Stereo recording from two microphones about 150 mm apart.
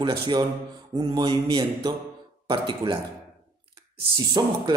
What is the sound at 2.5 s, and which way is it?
Speech, 35° right (ahead or behind).